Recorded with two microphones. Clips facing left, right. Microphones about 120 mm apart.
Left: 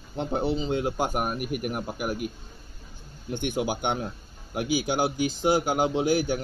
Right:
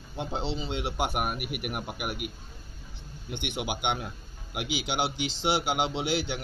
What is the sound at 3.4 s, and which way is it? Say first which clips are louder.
Speech: left 5 dB; 40° left (ahead or behind).